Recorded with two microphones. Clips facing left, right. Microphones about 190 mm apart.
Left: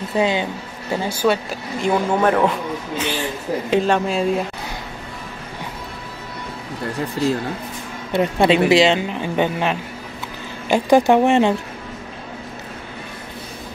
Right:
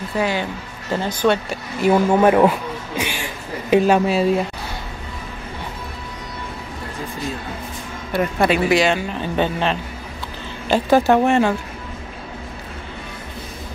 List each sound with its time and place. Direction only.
0.1 s speech: 20° left (ahead or behind); by 2.5 s 10° right (ahead or behind)
3.0 s a sound: 10° right (ahead or behind)
3.7 s speech: 10° right (ahead or behind)
7.0 s speech: 75° left (ahead or behind)
8.1 s speech: 25° left (ahead or behind)